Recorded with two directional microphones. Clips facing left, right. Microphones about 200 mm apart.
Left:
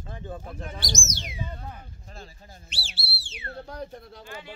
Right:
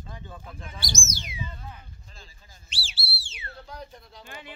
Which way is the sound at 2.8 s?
60° left (ahead or behind).